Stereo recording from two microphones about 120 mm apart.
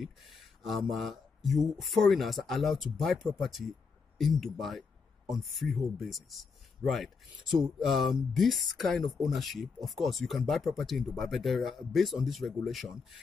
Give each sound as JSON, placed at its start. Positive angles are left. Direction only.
{"t": 0.0, "sound": "speech", "side_deg": 0}